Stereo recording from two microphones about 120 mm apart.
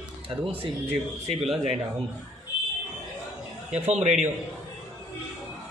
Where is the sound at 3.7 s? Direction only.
65° right (ahead or behind).